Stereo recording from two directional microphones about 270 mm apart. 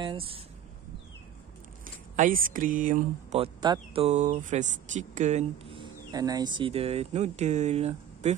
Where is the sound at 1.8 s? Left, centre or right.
Right.